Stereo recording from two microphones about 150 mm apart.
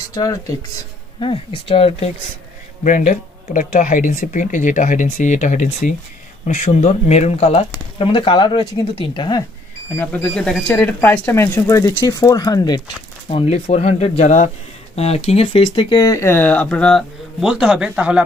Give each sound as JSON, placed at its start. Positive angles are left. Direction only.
{"t": 0.1, "sound": "speech", "side_deg": 25}
{"t": 1.2, "sound": "speech", "side_deg": 40}
{"t": 2.8, "sound": "speech", "side_deg": 55}
{"t": 9.9, "sound": "speech", "side_deg": 10}
{"t": 13.3, "sound": "speech", "side_deg": 45}